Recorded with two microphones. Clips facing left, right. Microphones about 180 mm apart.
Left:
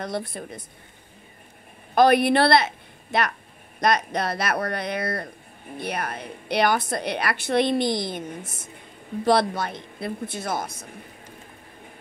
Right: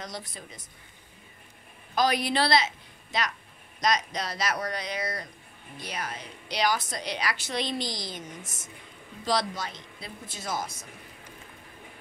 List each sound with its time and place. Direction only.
0.0 s a woman's voice: 60° left (ahead or behind)
2.0 s a woman's voice: 60° left (ahead or behind)